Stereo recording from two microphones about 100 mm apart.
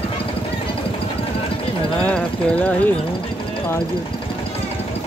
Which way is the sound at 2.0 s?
15° left (ahead or behind).